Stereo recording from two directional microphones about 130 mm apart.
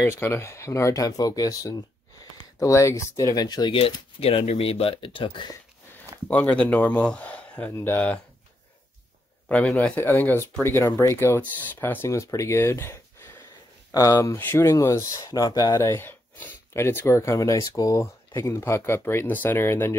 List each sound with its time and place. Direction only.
0.0 s speech: 20° left (ahead or behind)
3.7 s speech: 45° left (ahead or behind)
6.1 s a sound: 30° right (ahead or behind)
6.5 s speech: 10° left (ahead or behind)
9.5 s speech: 10° left (ahead or behind)